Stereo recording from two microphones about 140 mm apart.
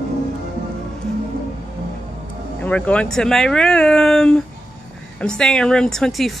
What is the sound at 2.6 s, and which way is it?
Speech, 10° left (ahead or behind).